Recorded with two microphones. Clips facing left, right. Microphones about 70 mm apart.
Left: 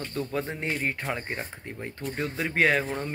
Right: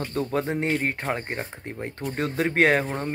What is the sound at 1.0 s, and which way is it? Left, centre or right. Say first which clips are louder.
Speech: right 3 dB; right.